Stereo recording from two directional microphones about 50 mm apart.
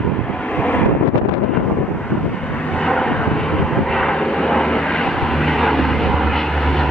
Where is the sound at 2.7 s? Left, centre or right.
Centre.